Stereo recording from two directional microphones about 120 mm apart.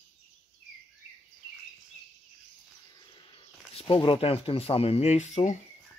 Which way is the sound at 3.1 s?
45° left (ahead or behind).